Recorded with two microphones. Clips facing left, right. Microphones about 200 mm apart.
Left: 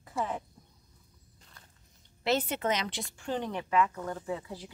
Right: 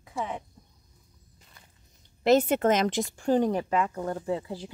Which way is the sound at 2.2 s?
45° right (ahead or behind).